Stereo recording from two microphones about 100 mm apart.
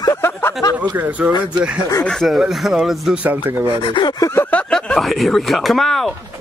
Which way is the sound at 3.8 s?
55° left (ahead or behind).